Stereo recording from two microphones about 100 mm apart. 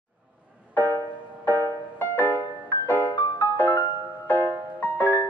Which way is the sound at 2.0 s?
20° left (ahead or behind).